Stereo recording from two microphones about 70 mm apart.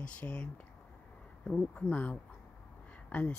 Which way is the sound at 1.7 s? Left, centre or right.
Centre.